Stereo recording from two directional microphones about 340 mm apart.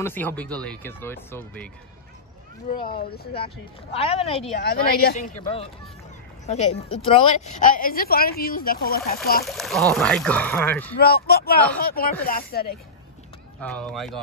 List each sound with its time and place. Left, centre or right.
0.0 s speech: centre
2.8 s speech: left
4.6 s speech: left
7.1 s speech: centre
9.5 s speech: centre
11.0 s speech: left
13.6 s speech: centre